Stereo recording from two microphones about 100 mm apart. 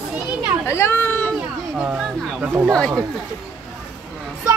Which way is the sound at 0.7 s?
25° left (ahead or behind).